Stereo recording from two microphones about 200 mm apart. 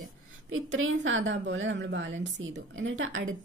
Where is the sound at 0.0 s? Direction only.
85° right.